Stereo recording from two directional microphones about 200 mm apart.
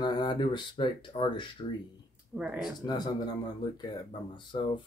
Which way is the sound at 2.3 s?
5° right (ahead or behind).